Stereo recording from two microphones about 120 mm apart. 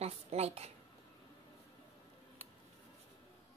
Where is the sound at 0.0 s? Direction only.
60° right (ahead or behind).